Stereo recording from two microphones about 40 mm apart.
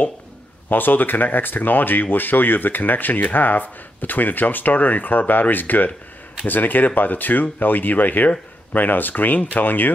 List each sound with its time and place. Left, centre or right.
0.7 s speech: left